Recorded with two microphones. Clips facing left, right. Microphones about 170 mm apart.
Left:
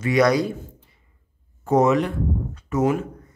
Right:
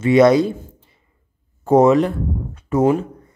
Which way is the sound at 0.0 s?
25° right (ahead or behind).